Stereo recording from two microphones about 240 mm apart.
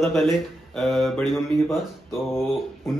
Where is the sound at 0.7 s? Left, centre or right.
Centre.